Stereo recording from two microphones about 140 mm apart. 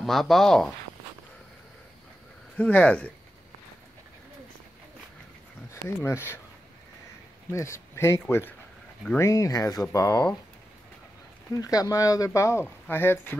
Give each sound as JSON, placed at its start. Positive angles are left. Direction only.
{"t": 0.0, "sound": "speech", "side_deg": 0}
{"t": 2.5, "sound": "speech", "side_deg": 10}
{"t": 5.7, "sound": "speech", "side_deg": 20}
{"t": 7.5, "sound": "speech", "side_deg": 20}
{"t": 11.5, "sound": "speech", "side_deg": 25}